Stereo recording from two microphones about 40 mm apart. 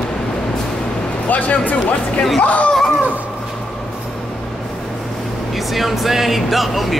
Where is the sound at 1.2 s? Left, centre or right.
Left.